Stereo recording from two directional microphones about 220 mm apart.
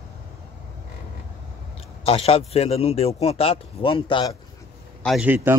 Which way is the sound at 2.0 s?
25° left (ahead or behind).